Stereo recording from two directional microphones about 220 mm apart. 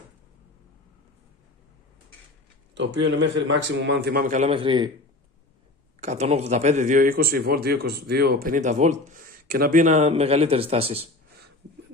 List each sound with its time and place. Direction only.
2.7 s a man's voice: 55° right (ahead or behind); by 4.9 s 20° right (ahead or behind)
5.9 s a man's voice: 30° right (ahead or behind)